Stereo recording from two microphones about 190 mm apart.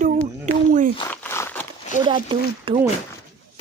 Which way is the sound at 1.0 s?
10° left (ahead or behind).